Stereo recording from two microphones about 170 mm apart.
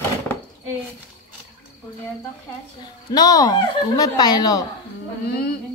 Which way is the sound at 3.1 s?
20° left (ahead or behind).